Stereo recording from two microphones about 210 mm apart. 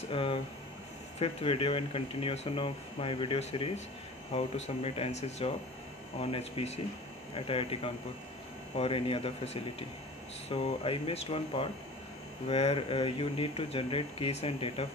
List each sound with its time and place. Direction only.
0.1 s speech: 25° left (ahead or behind)